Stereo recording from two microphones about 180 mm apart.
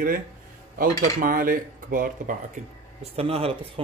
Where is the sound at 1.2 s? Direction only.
50° right (ahead or behind).